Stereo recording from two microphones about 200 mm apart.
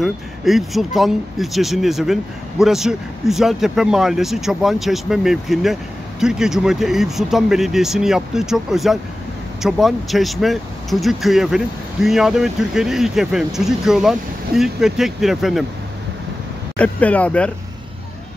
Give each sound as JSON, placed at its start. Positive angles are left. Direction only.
{"t": 0.0, "sound": "speech", "side_deg": 0}
{"t": 16.7, "sound": "speech", "side_deg": 5}